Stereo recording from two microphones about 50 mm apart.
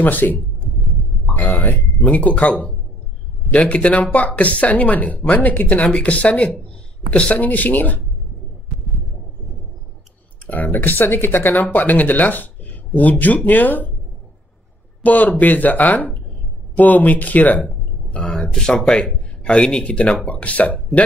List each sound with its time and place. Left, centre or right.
0.0 s speech: left
10.5 s speech: left
15.0 s speech: left
17.6 s a sound: left
18.5 s speech: centre
18.9 s speech: left